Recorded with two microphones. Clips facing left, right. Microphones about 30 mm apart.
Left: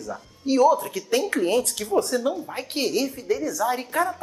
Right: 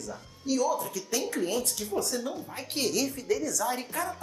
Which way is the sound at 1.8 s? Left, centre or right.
Left.